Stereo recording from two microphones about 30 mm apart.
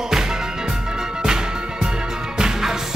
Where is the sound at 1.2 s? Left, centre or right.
Right.